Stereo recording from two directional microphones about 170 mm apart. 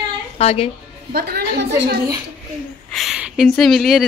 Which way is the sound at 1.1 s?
65° right (ahead or behind).